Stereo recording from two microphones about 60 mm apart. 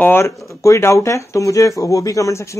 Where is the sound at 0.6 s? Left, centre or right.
Left.